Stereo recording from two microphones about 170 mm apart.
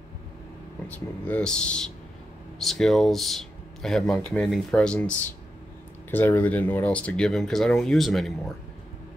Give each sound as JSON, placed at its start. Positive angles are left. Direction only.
{"t": 0.8, "sound": "speech", "side_deg": 10}